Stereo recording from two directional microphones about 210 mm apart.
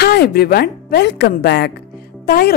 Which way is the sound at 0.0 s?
50° left (ahead or behind).